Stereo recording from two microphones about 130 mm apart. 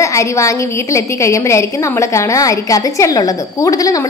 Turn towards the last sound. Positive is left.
turn(degrees=25)  # may be behind; listen again after turning